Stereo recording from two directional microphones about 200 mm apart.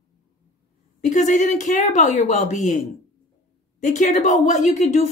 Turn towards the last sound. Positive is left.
turn(degrees=35)  # may be behind; listen again after turning